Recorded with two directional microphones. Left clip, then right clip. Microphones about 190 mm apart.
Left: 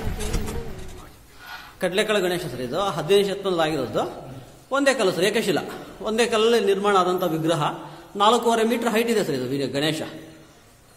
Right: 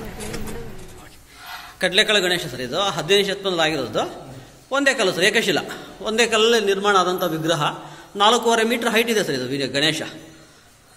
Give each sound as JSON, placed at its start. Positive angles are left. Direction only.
{"t": 1.5, "sound": "a man's voice", "side_deg": 0}